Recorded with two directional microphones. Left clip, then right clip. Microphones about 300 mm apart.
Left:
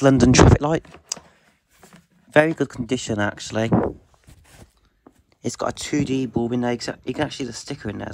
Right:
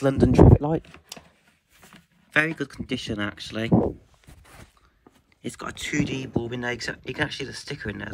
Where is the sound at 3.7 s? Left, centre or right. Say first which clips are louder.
Right 1 dB; right.